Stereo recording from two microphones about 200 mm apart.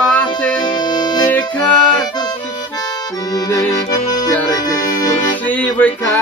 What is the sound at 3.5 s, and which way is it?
Accordion, 15° left (ahead or behind).